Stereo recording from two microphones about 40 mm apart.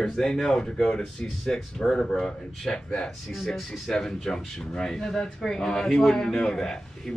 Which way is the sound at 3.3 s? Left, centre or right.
Centre.